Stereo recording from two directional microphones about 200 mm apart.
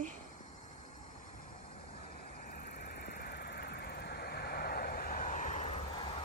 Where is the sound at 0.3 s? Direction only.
35° left (ahead or behind).